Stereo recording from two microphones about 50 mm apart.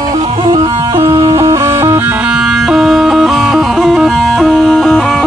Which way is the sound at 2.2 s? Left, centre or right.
Centre.